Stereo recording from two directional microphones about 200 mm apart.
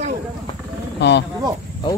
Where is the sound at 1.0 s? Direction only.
55° left (ahead or behind).